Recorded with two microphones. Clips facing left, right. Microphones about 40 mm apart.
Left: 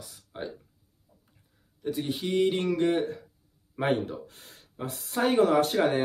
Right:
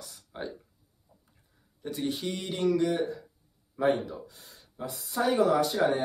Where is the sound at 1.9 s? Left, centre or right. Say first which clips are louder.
Left 2 dB; centre.